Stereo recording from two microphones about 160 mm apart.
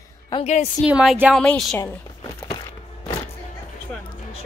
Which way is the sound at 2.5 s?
25° left (ahead or behind).